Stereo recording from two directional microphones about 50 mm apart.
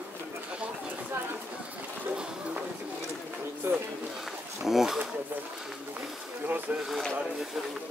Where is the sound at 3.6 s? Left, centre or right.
Right.